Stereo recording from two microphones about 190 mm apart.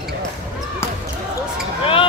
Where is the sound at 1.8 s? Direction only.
30° left (ahead or behind).